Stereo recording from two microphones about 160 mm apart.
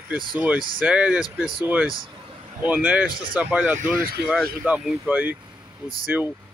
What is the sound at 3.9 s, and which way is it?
Speech, 65° right (ahead or behind).